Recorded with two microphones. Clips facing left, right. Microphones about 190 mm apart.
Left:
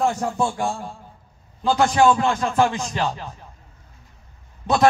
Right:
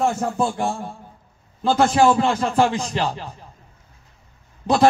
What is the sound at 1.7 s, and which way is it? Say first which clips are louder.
A man's voice: right 1 dB; centre (ahead or behind).